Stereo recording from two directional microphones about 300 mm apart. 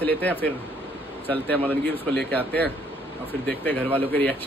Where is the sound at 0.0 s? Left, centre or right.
Centre.